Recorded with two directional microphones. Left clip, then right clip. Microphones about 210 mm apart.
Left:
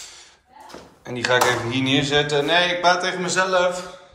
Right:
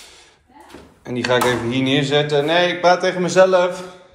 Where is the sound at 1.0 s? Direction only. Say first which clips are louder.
Right 1 dB; 10° left (ahead or behind).